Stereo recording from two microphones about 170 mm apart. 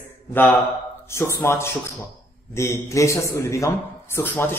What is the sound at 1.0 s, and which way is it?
A man's voice, 15° left (ahead or behind).